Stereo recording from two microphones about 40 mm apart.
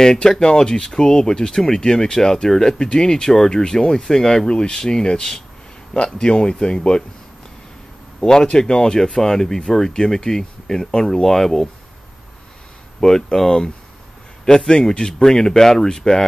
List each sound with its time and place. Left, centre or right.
0.0 s speech: centre
8.2 s speech: left; by 11.7 s centre
13.0 s speech: centre
14.7 s speech: centre